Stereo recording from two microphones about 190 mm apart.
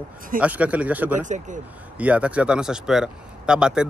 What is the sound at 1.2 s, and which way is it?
Speech, 40° right (ahead or behind).